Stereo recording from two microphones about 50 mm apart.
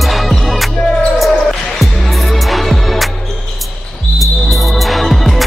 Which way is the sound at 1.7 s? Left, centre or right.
Centre.